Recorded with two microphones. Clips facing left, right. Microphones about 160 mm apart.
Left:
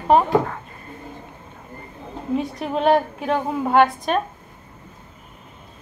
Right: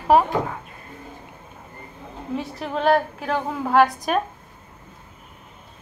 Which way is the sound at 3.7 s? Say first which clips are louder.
Left 1 dB; centre (ahead or behind).